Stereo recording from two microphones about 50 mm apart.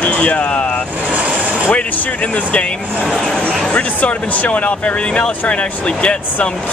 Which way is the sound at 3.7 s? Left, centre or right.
Left.